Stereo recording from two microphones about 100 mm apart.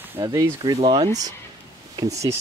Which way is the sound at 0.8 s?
55° right (ahead or behind).